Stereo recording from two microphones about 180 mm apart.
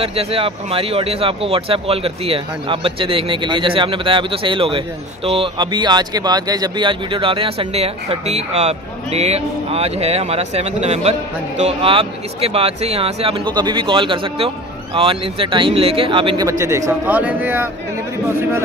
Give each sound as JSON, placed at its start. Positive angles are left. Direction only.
{"t": 0.0, "sound": "speech", "side_deg": -35}
{"t": 16.4, "sound": "a man's voice", "side_deg": -15}